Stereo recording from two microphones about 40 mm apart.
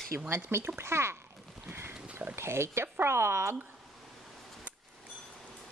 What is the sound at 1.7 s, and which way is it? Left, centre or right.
Pig, right.